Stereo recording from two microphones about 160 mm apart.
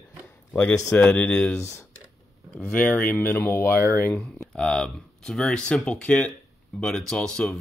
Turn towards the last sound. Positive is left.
turn(degrees=5)  # may be behind; listen again after turning